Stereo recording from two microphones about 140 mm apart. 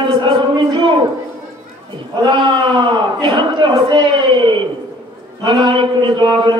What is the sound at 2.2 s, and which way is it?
A man's voice, 35° right (ahead or behind).